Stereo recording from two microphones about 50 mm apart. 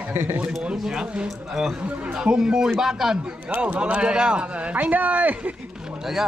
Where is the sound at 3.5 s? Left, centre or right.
Right.